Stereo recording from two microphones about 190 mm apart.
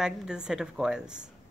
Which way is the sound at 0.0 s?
5° right (ahead or behind).